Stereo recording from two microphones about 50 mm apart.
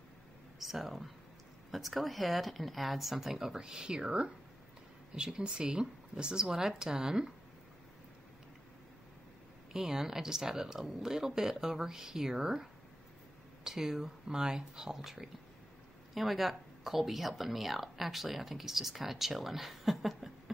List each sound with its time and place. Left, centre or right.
0.6 s speech: centre
9.7 s speech: centre
13.7 s speech: centre